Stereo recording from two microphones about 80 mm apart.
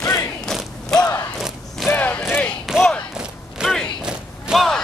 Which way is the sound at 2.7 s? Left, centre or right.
Centre.